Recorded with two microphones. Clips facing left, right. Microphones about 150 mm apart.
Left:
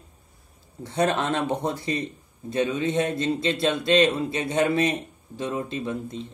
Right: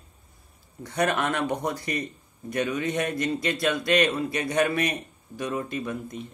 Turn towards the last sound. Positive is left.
turn(degrees=25)  # may be behind; listen again after turning